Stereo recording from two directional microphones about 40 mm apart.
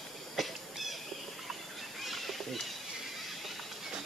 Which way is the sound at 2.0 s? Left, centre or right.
Centre.